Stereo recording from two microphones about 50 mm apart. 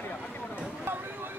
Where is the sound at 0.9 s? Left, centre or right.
Right.